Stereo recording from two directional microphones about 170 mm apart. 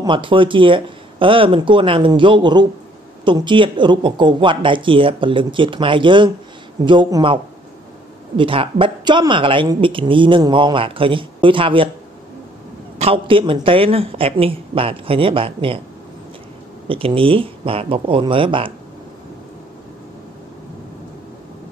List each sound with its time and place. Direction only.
0.0 s speech: 30° right (ahead or behind)
8.4 s speech: 30° right (ahead or behind)
13.0 s speech: 30° right (ahead or behind)
16.8 s speech: 30° right (ahead or behind)